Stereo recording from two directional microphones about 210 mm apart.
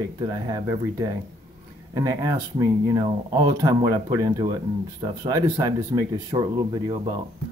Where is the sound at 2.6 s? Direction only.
20° right (ahead or behind).